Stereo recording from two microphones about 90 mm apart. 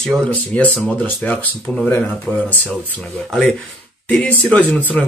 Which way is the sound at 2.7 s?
5° left (ahead or behind).